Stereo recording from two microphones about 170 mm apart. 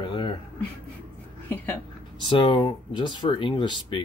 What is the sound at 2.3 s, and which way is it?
Speech, 30° left (ahead or behind).